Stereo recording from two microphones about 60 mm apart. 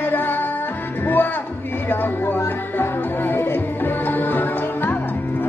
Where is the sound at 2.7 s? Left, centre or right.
Left.